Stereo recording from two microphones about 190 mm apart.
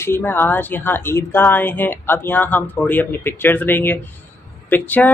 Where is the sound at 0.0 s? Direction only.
10° left (ahead or behind).